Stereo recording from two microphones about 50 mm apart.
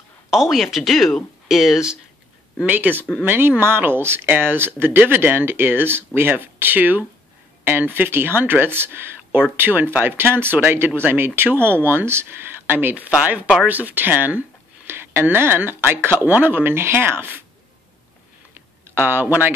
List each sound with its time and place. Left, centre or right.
0.3 s speech: centre
1.5 s speech: centre
2.6 s speech: right
14.9 s a sound: right
15.2 s speech: right
18.5 s a sound: right